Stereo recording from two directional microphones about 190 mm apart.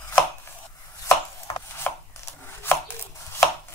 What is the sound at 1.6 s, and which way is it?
Chopping, 15° left (ahead or behind).